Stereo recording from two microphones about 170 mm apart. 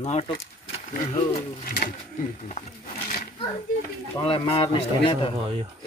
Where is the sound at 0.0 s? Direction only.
40° left (ahead or behind).